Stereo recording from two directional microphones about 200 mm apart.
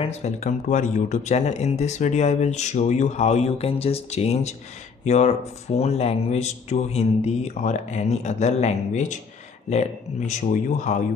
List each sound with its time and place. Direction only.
0.0 s speech: 30° left (ahead or behind)